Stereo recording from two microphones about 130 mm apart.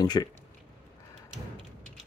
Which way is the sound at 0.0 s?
30° left (ahead or behind).